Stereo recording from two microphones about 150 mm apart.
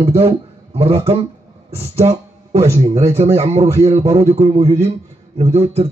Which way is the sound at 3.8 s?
45° right (ahead or behind).